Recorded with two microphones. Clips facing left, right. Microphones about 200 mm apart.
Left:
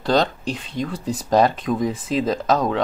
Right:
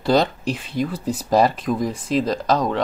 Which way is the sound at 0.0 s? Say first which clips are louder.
Right 1 dB; 5° right (ahead or behind).